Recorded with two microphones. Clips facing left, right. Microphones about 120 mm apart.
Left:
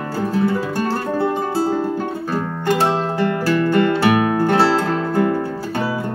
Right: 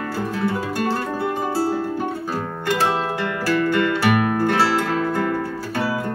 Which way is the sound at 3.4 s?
35° left (ahead or behind).